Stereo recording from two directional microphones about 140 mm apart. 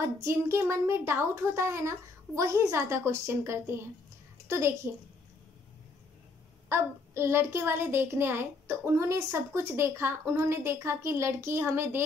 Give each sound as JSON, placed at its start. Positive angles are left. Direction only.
{"t": 0.0, "sound": "a woman's voice", "side_deg": -20}
{"t": 6.7, "sound": "a child's voice", "side_deg": -20}